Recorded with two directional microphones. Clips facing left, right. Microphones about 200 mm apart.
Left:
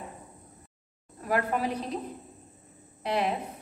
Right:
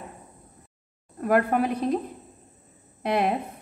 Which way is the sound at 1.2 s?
55° right (ahead or behind).